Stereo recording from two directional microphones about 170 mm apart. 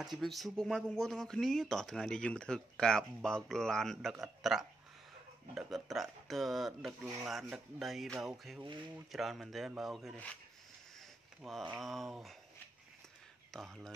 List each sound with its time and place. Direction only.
0.2 s speech: centre (ahead or behind)
8.6 s speech: 30° right (ahead or behind)
8.9 s speech: centre (ahead or behind)
11.7 s speech: centre (ahead or behind)
13.5 s speech: centre (ahead or behind)